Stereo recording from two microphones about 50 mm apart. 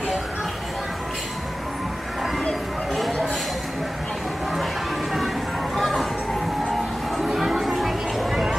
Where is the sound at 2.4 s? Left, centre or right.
Centre.